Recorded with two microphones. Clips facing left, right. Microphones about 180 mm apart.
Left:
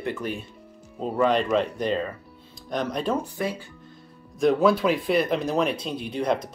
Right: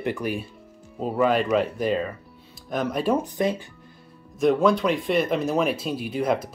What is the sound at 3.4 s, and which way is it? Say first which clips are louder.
Speech: right 5 dB; 20° right (ahead or behind).